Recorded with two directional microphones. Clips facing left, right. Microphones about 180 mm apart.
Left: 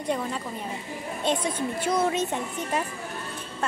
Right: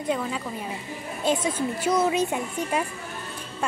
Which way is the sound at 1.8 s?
30° left (ahead or behind).